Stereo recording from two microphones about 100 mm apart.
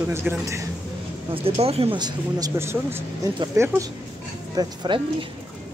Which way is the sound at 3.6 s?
25° right (ahead or behind).